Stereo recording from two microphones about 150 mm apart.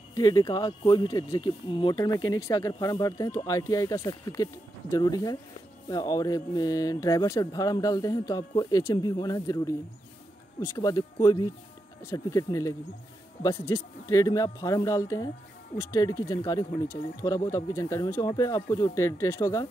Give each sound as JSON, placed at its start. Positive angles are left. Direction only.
{"t": 0.1, "sound": "speech", "side_deg": 25}